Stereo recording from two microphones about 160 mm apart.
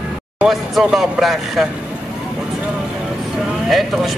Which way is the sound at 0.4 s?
Centre (ahead or behind).